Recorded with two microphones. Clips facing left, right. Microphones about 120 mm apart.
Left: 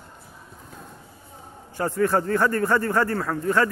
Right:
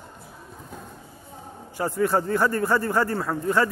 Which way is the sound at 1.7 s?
15° right (ahead or behind).